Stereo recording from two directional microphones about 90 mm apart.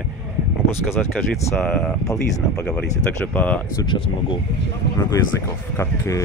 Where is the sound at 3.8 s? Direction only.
60° left (ahead or behind).